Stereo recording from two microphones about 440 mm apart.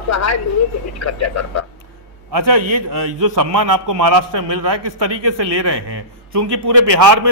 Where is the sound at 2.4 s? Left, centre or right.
Right.